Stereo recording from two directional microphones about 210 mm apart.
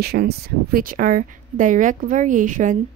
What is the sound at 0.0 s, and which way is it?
Speech, 50° right (ahead or behind).